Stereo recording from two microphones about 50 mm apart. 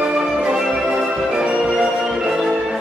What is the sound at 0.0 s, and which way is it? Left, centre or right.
Music, centre.